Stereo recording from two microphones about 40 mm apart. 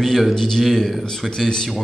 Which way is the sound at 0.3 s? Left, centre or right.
Centre.